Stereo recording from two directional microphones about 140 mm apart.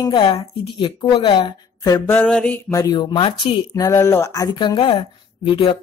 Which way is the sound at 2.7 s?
25° left (ahead or behind).